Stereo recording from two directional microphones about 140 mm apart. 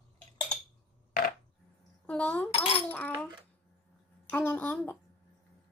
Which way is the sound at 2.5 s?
40° left (ahead or behind).